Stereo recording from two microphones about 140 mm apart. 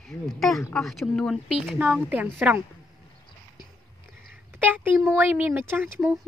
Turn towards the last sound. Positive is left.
turn(degrees=-10)  # may be behind; listen again after turning